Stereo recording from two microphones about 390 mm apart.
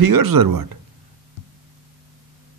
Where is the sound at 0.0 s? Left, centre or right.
Right.